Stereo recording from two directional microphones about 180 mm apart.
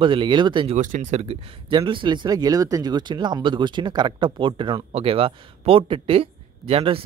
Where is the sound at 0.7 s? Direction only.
40° right (ahead or behind).